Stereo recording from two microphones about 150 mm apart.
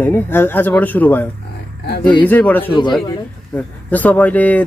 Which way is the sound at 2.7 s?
30° left (ahead or behind).